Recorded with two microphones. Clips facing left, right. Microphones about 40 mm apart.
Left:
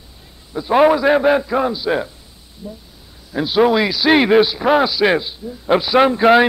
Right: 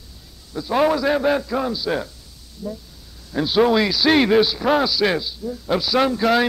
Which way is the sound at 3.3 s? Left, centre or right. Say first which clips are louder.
Left 2 dB; centre.